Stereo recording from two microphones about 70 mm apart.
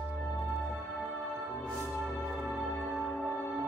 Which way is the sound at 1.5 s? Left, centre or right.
Centre.